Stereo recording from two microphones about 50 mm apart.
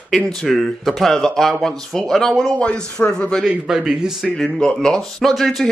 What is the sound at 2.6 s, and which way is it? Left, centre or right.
Speech, left.